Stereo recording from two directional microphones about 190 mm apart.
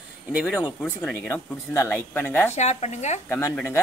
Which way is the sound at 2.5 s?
35° left (ahead or behind).